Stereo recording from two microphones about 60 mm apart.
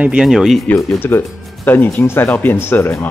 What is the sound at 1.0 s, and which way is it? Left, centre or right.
Speech, left.